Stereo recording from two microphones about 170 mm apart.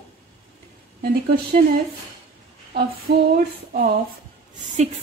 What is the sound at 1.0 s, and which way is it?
Speech, 60° right (ahead or behind).